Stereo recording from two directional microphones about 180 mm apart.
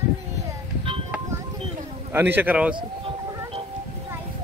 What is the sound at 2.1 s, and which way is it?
Speech, 10° right (ahead or behind).